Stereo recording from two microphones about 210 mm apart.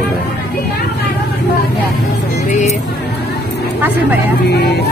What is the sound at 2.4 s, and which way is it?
Music, 35° left (ahead or behind).